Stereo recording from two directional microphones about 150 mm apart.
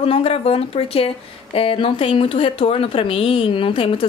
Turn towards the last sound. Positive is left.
turn(degrees=35)  # may be behind; listen again after turning